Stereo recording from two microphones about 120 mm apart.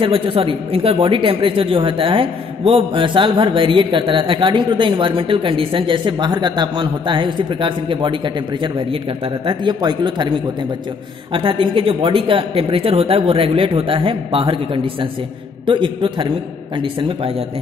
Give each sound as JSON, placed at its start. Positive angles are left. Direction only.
{"t": 0.0, "sound": "a woman's voice", "side_deg": -50}
{"t": 9.5, "sound": "speech", "side_deg": -40}
{"t": 11.3, "sound": "a woman's voice", "side_deg": -45}